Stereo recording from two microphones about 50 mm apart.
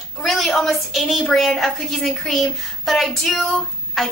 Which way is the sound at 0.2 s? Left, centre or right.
Centre.